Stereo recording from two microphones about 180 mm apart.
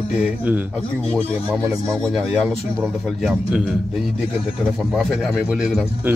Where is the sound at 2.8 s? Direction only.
5° right (ahead or behind).